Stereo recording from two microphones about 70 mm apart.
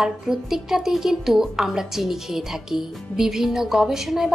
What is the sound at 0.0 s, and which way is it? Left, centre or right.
A woman's voice, centre.